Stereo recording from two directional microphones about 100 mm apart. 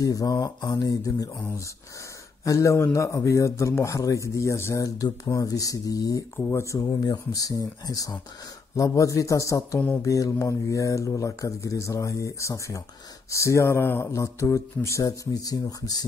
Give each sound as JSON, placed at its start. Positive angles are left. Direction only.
{"t": 0.0, "sound": "a man's voice", "side_deg": 40}
{"t": 2.4, "sound": "a man's voice", "side_deg": 30}
{"t": 6.3, "sound": "a man's voice", "side_deg": 25}